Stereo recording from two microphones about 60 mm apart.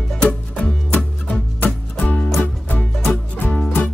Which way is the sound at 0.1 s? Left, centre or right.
Centre.